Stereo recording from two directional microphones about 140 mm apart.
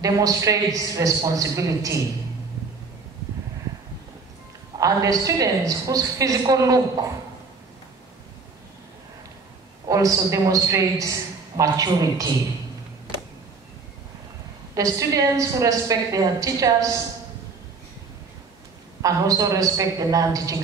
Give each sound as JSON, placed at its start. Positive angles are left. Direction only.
{"t": 0.0, "sound": "a woman's voice", "side_deg": -25}
{"t": 4.7, "sound": "a woman's voice", "side_deg": -25}
{"t": 9.8, "sound": "a woman's voice", "side_deg": -25}
{"t": 14.8, "sound": "a woman's voice", "side_deg": -25}
{"t": 19.0, "sound": "a woman's voice", "side_deg": -25}